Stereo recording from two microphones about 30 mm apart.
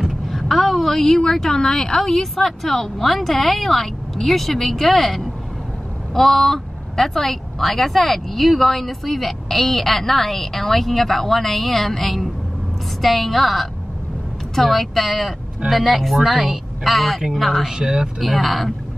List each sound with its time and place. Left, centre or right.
0.3 s a woman's voice: centre; by 2.0 s left
2.0 s a woman's voice: centre
17.6 s speech: right
18.2 s a woman's voice: centre